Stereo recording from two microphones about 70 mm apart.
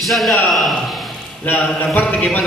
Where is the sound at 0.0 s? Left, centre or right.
Centre.